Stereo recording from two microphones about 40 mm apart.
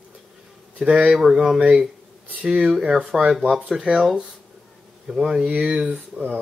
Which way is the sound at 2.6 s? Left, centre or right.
Centre.